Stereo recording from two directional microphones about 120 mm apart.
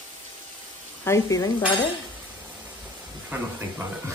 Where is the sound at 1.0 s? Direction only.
25° left (ahead or behind).